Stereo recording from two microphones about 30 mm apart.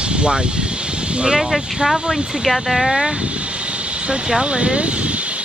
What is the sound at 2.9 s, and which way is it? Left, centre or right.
Speech, right.